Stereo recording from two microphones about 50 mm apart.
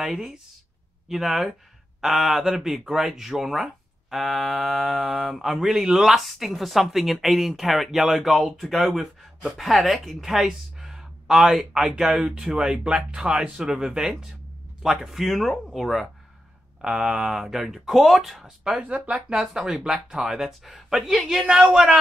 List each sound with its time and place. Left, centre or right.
0.0 s a woman's voice: centre
15.0 s speech: centre
16.8 s speech: centre
18.6 s speech: centre
18.9 s speech: right
19.3 s speech: centre